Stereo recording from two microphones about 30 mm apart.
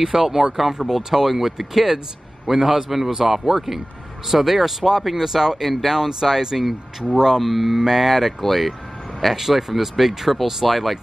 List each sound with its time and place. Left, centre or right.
0.0 s a man's voice: centre
5.7 s speech: centre
5.9 s a man's voice: centre
6.5 s speech: centre